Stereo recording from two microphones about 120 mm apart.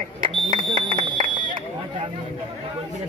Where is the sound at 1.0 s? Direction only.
40° right (ahead or behind).